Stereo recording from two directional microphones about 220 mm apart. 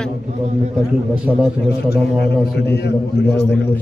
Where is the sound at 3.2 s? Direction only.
50° left (ahead or behind).